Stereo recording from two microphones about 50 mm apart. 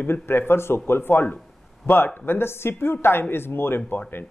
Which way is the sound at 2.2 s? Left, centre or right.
Left.